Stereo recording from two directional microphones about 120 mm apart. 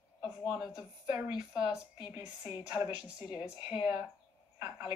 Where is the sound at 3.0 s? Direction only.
10° right (ahead or behind).